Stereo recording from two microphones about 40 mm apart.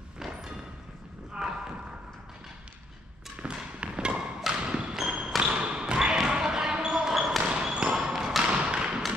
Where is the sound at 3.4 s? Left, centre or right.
Right.